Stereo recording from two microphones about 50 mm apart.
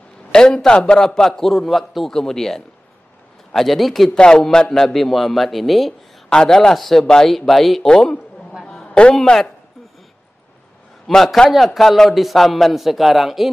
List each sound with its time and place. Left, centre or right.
0.3 s a man's voice: centre
4.2 s a man's voice: centre
6.3 s a man's voice: centre
7.9 s a man's voice: centre
8.8 s a sound: left
9.1 s a man's voice: centre
11.1 s a man's voice: centre